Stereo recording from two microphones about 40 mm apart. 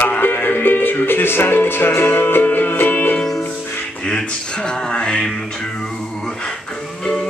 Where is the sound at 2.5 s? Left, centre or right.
Left.